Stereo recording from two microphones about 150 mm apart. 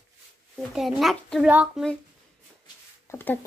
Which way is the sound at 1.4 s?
10° right (ahead or behind).